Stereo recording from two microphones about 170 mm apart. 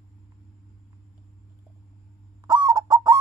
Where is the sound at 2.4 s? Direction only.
25° right (ahead or behind).